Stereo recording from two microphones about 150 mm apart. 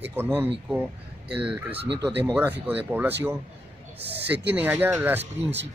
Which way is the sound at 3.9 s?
90° right.